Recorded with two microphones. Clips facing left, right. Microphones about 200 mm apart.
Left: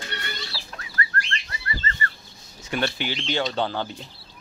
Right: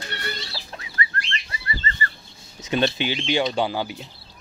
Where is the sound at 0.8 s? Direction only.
20° right (ahead or behind).